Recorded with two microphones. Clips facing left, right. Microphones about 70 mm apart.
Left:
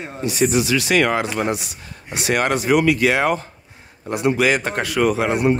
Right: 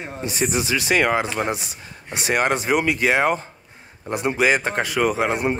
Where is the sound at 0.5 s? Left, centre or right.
Right.